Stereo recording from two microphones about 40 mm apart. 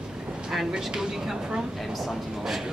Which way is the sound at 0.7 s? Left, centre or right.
Centre.